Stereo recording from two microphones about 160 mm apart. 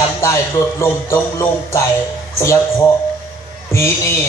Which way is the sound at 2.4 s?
20° left (ahead or behind).